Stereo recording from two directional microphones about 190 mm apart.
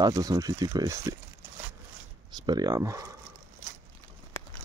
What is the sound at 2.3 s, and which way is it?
Speech, 20° right (ahead or behind).